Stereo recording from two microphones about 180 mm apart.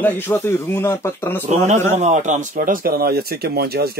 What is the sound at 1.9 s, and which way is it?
Speech, 40° right (ahead or behind).